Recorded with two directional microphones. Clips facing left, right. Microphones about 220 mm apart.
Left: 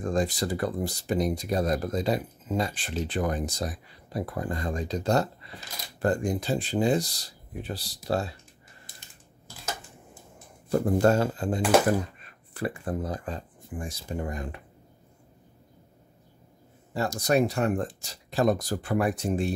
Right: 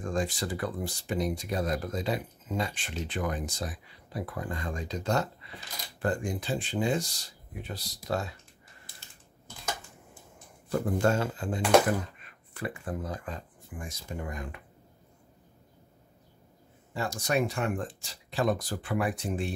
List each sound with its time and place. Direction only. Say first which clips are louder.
0.0 s speech: left 4 dB; 35° left (ahead or behind)
10.7 s speech: left 5 dB; 40° left (ahead or behind)
16.9 s speech: left 5 dB; 40° left (ahead or behind)